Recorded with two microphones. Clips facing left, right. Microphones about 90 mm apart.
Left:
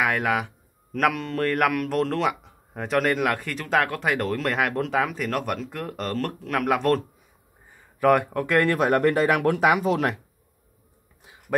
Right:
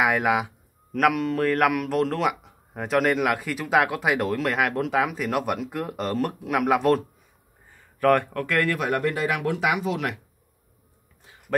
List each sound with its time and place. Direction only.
0.0 s speech: 10° right (ahead or behind)
7.7 s speech: 10° left (ahead or behind)
8.6 s speech: 40° left (ahead or behind)